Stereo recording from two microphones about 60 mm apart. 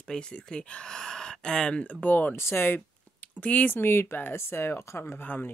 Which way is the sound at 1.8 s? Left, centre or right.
Left.